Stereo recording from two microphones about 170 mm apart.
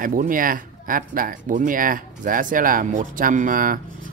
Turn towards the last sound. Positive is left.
turn(degrees=-55)  # may be behind; listen again after turning